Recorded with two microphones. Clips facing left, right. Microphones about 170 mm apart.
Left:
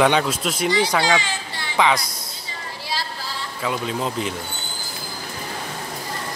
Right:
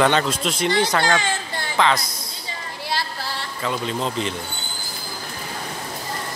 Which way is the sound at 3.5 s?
5° left (ahead or behind).